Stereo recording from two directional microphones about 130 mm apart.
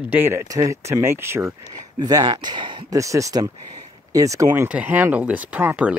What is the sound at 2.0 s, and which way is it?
Speech, 30° right (ahead or behind).